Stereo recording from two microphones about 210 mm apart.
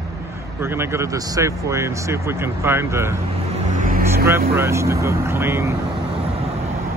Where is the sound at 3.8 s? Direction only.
40° right (ahead or behind).